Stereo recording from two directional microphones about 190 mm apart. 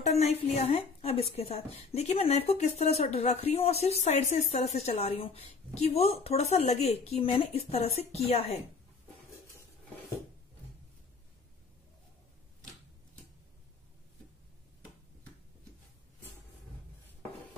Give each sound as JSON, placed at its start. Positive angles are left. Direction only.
{"t": 0.0, "sound": "speech", "side_deg": 35}